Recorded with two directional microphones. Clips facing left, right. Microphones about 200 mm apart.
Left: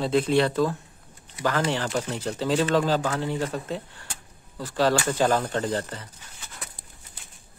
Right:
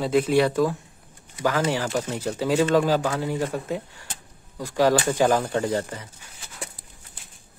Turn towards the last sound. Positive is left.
turn(degrees=-10)  # may be behind; listen again after turning